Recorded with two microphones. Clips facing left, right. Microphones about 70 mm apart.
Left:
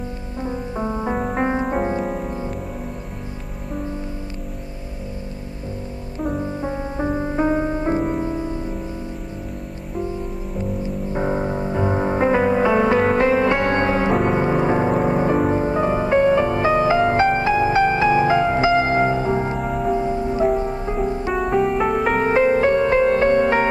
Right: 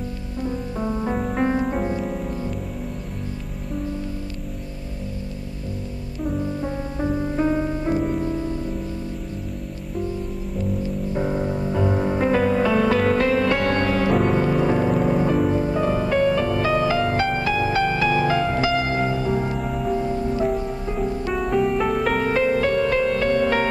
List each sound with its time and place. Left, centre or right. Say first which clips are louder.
0.4 s music: left 1 dB; left
6.3 s music: left 1 dB; left
11.1 s music: left 3 dB; left
21.5 s music: left 1 dB; centre
22.2 s music: left 7 dB; left